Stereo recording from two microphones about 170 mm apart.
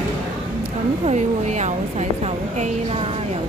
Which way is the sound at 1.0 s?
45° right (ahead or behind).